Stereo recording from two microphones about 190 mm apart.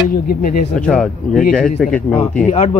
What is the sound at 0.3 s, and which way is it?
Speech, 45° left (ahead or behind).